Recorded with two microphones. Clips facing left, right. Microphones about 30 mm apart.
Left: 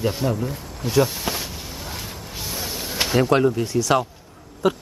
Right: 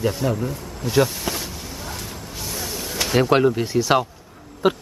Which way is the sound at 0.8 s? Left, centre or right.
Centre.